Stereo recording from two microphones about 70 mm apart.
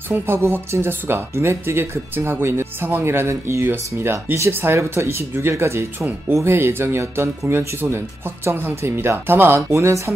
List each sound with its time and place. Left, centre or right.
0.1 s speech: right